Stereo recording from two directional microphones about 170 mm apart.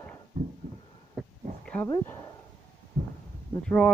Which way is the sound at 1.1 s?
5° left (ahead or behind).